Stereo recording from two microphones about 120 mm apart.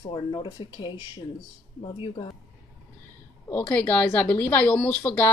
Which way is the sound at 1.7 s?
65° left (ahead or behind).